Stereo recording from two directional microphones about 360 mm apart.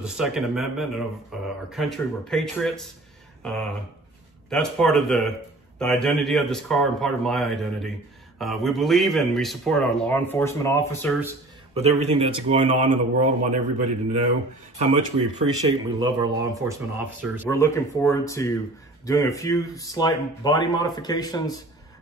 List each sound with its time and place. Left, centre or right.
0.0 s a man's voice: centre
4.5 s a man's voice: centre
11.7 s a man's voice: centre
17.5 s speech: centre